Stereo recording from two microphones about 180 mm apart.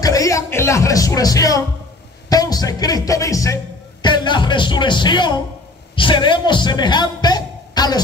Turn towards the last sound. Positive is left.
turn(degrees=20)  # may be behind; listen again after turning